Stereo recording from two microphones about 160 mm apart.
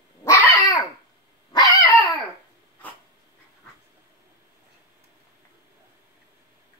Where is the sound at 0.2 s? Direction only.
20° left (ahead or behind).